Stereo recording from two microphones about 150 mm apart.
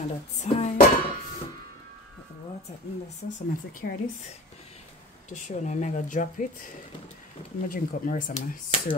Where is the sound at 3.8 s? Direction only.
90° left.